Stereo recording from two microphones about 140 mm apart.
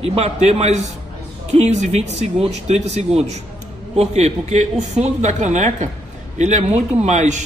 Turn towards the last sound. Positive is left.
turn(degrees=-55)  # may be behind; listen again after turning